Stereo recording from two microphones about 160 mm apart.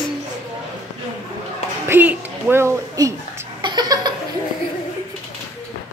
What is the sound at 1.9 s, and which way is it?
A woman's voice, 10° right (ahead or behind).